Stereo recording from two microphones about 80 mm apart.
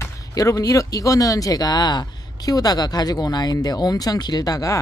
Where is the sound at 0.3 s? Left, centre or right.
Left.